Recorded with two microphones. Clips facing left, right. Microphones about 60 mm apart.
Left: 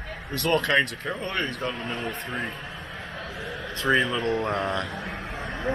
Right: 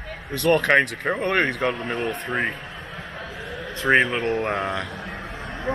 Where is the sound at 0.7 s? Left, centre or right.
Right.